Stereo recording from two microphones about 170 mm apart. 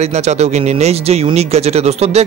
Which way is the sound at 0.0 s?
40° right (ahead or behind).